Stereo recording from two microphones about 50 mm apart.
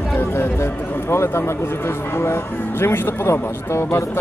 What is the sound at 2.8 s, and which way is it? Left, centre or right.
A man's voice, left.